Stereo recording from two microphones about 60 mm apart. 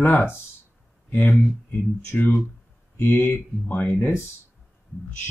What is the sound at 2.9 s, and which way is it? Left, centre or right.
Speech, left.